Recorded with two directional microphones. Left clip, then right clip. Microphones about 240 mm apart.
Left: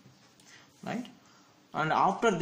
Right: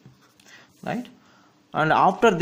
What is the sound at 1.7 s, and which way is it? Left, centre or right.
Speech, right.